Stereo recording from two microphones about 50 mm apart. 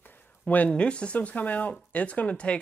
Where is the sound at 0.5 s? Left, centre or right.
Left.